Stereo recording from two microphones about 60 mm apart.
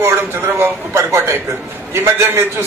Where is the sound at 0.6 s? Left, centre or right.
Right.